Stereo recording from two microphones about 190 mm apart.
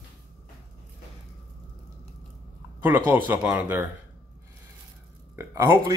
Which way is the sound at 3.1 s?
10° right (ahead or behind).